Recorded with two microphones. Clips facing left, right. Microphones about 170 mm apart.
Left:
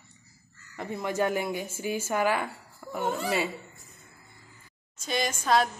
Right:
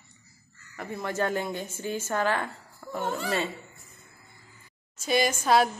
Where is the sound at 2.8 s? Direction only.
10° left (ahead or behind).